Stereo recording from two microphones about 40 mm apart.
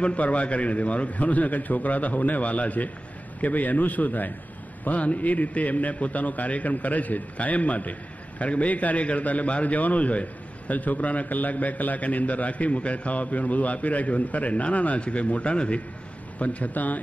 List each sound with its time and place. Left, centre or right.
0.0 s a man's voice: left